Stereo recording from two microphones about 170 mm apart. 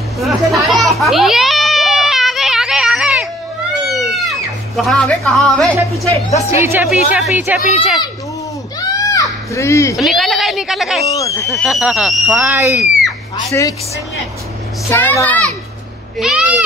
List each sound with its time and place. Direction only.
0.2 s children playing: centre (ahead or behind)
3.8 s music: centre (ahead or behind)
6.5 s speech: 15° right (ahead or behind)
8.7 s children playing: 20° left (ahead or behind)
9.9 s speech: centre (ahead or behind)
11.1 s speech: 20° left (ahead or behind)
11.4 s speech: centre (ahead or behind); by 12.8 s 15° right (ahead or behind)
13.5 s speech: 20° left (ahead or behind)
14.9 s a child's voice: 15° left (ahead or behind)
16.2 s speech: 5° right (ahead or behind)